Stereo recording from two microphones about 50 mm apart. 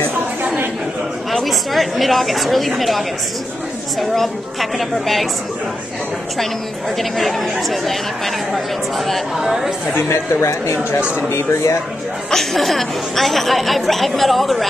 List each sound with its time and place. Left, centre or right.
1.3 s a woman's voice: centre
4.0 s a woman's voice: centre
7.0 s a woman's voice: centre
10.0 s speech: left
12.3 s a woman's voice: centre